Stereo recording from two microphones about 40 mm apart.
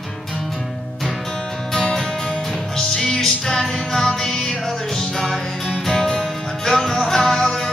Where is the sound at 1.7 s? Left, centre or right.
Centre.